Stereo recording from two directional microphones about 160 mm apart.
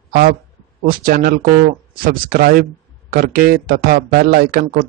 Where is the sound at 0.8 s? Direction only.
60° right (ahead or behind).